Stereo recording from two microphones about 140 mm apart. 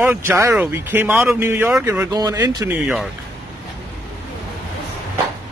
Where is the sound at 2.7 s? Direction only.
5° right (ahead or behind).